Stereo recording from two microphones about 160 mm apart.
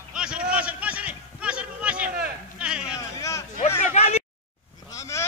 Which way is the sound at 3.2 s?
20° left (ahead or behind).